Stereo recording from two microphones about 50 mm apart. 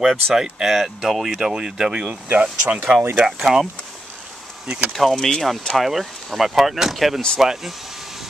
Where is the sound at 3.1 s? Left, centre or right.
Right.